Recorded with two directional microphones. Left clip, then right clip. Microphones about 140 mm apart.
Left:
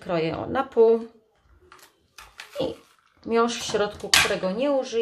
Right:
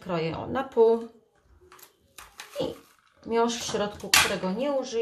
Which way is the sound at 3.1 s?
40° left (ahead or behind).